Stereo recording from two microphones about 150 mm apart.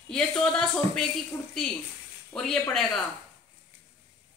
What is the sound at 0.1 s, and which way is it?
Speech, 5° left (ahead or behind).